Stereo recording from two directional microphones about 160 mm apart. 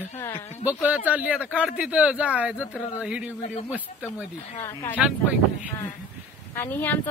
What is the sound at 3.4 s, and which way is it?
Speech, 50° left (ahead or behind).